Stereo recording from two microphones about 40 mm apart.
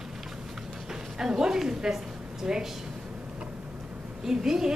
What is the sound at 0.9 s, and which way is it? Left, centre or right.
A woman's voice, centre.